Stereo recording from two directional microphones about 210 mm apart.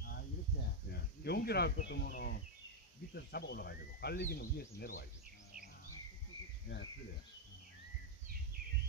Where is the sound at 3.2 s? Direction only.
50° left (ahead or behind).